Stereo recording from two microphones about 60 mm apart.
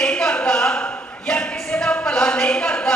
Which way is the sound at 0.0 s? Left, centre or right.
Centre.